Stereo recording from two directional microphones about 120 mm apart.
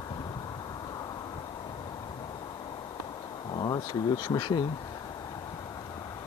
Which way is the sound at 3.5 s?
35° left (ahead or behind).